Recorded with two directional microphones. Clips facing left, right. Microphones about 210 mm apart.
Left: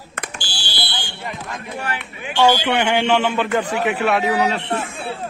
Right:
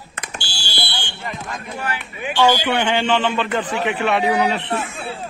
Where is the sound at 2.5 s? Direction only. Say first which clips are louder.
Even; 10° right (ahead or behind).